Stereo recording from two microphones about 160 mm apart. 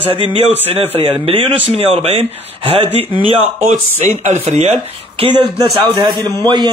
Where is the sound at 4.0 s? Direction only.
50° right (ahead or behind); by 6.7 s 30° right (ahead or behind).